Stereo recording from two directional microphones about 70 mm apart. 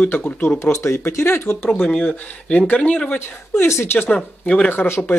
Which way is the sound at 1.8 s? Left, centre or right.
Centre.